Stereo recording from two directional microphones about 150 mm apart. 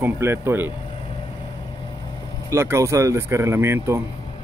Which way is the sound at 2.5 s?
20° right (ahead or behind).